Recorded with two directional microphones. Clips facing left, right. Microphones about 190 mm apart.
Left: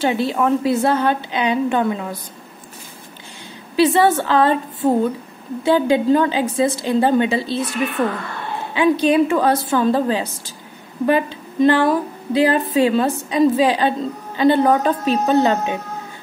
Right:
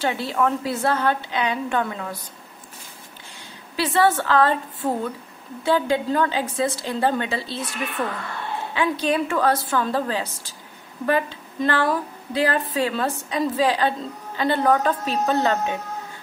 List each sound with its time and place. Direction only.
0.0 s a woman's voice: 20° left (ahead or behind)
3.7 s a woman's voice: 20° left (ahead or behind)
8.7 s a woman's voice: 20° left (ahead or behind)